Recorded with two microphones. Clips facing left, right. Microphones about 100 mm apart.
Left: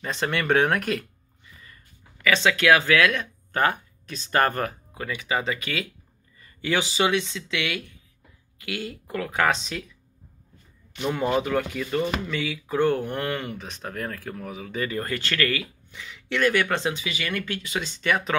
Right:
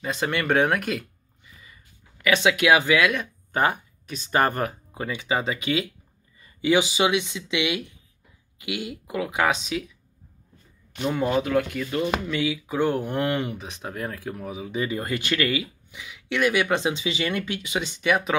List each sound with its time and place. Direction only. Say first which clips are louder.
0.0 s speech: right 1 dB; 5° right (ahead or behind)
2.2 s speech: even; 10° right (ahead or behind)
4.9 s speech: right 1 dB; 25° right (ahead or behind); by 9.8 s 5° right (ahead or behind)
11.0 s speech: right 1 dB; 5° right (ahead or behind)